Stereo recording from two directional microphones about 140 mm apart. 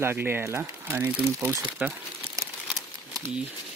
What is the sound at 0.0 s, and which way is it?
Speech, 15° right (ahead or behind).